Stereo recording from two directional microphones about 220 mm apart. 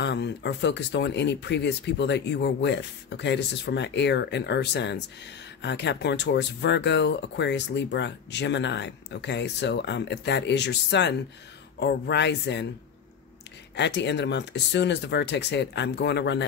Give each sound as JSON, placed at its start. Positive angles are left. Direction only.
{"t": 0.0, "sound": "speech", "side_deg": 50}
{"t": 13.7, "sound": "speech", "side_deg": 50}